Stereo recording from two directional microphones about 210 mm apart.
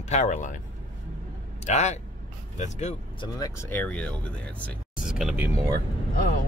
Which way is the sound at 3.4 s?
10° left (ahead or behind).